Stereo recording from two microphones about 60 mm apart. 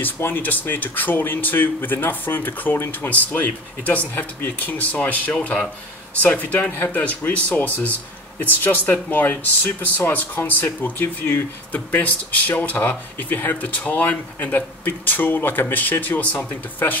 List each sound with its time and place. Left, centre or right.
0.0 s speech: left